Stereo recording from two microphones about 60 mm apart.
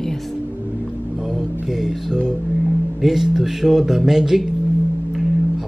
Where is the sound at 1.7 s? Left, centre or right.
Centre.